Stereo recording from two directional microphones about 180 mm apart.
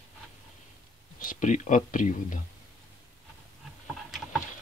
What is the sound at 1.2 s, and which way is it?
Speech, 45° left (ahead or behind).